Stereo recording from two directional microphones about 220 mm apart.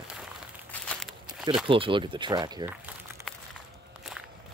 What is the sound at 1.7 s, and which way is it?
Speech, 25° right (ahead or behind).